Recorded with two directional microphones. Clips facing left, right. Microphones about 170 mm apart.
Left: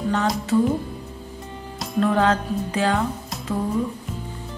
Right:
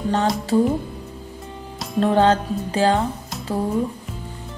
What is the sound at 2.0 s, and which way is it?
Music, 30° right (ahead or behind).